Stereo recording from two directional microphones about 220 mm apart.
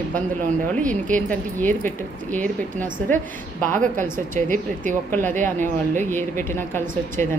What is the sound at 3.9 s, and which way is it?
A woman's voice, 35° right (ahead or behind).